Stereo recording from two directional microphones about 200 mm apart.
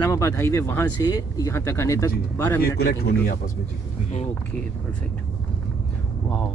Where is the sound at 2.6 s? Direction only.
50° left (ahead or behind).